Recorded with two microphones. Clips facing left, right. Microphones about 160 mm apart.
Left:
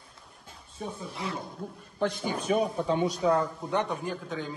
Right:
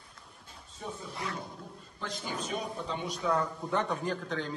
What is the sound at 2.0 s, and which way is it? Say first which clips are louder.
Speech: left 8 dB; 65° left (ahead or behind).